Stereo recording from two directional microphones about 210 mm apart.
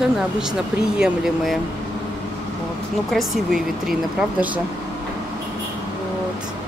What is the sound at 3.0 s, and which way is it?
Speech, centre (ahead or behind).